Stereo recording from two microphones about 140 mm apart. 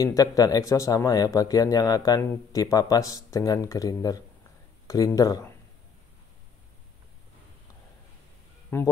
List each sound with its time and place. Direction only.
0.0 s a man's voice: 25° left (ahead or behind)
8.7 s speech: 15° left (ahead or behind)